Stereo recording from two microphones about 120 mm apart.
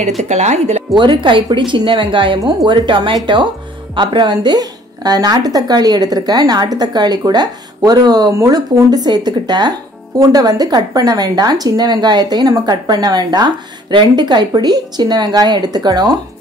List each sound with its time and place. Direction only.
0.2 s speech: 70° right (ahead or behind)
0.9 s a woman's voice: 40° right (ahead or behind)